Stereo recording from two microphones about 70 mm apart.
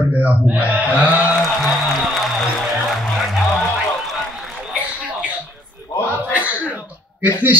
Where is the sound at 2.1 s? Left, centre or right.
Centre.